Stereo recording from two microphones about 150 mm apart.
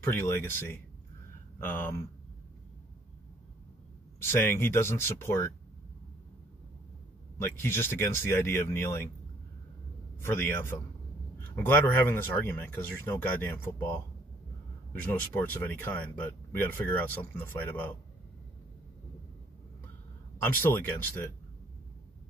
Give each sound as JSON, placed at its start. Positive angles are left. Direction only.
{"t": 0.2, "sound": "speech", "side_deg": 15}
{"t": 4.3, "sound": "speech", "side_deg": 15}
{"t": 7.3, "sound": "speech", "side_deg": 15}
{"t": 10.1, "sound": "speech", "side_deg": 15}
{"t": 15.3, "sound": "speech", "side_deg": 15}
{"t": 20.7, "sound": "speech", "side_deg": 10}